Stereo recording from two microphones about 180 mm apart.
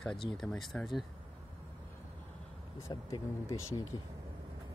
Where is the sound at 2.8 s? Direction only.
20° left (ahead or behind).